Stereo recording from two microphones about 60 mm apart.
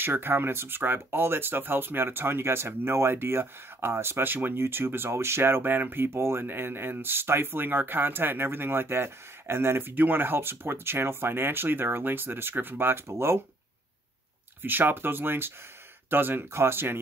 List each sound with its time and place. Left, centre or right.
0.0 s speech: right
14.6 s speech: right